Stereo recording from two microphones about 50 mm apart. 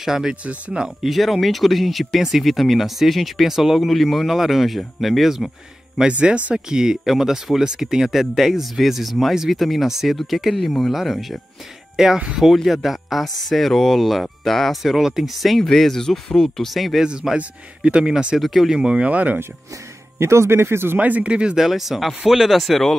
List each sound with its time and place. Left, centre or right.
0.0 s speech: centre
0.4 s speech: right
0.8 s speech: centre
6.1 s speech: right
6.5 s speech: centre
12.0 s speech: centre
17.0 s speech: centre
18.4 s speech: centre
18.8 s speech: centre
20.2 s speech: right
21.0 s speech: right
21.3 s speech: centre
21.5 s speech: centre